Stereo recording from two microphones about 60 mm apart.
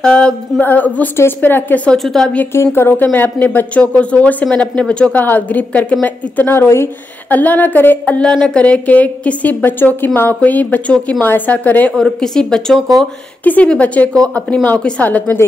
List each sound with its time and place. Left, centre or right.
0.0 s a woman's voice: centre
0.6 s speech: left
1.1 s a woman's voice: left
2.0 s a woman's voice: centre
2.5 s speech: left; by 5.2 s centre
5.2 s speech: left
6.0 s a woman's voice: left
7.2 s speech: left
8.2 s a woman's voice: centre
8.6 s speech: left
12.0 s a woman's voice: centre
13.4 s a woman's voice: left
15.0 s speech: left